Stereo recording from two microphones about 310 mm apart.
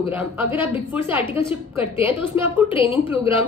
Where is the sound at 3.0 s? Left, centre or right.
Centre.